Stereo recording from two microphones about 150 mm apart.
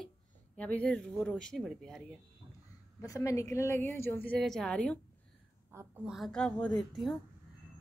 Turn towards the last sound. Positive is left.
turn(degrees=0)  # may be behind; listen again after turning